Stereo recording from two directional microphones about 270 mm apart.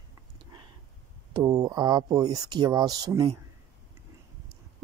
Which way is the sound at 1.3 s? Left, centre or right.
Centre.